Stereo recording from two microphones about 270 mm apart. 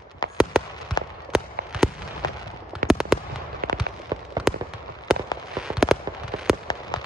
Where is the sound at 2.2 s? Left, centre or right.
Centre.